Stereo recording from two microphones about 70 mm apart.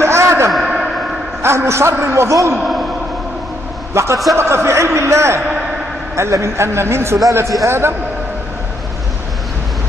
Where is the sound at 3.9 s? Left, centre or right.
Right.